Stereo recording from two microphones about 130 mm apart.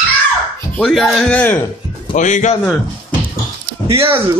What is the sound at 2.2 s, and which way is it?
Speech, 70° left (ahead or behind).